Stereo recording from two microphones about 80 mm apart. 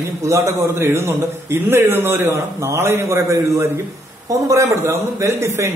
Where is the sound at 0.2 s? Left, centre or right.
Right.